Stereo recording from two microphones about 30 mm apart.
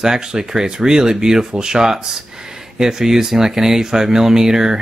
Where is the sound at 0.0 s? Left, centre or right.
Right.